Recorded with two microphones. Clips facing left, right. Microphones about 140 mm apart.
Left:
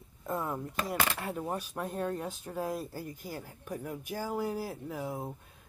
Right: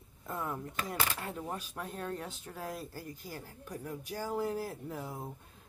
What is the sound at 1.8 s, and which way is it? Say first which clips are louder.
Speech: left 6 dB; 15° left (ahead or behind).